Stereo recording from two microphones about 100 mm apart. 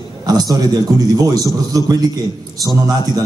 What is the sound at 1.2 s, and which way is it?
Speech, 40° right (ahead or behind).